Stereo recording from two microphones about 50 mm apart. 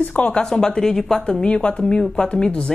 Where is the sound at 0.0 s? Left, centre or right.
Left.